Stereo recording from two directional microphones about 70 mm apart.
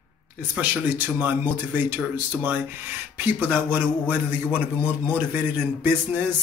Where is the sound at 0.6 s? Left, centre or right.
Right.